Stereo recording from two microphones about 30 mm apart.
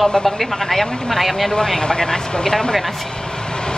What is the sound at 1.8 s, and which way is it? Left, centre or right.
Speech, left.